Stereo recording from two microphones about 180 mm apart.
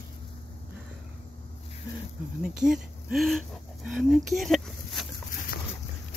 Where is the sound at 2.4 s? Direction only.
5° right (ahead or behind).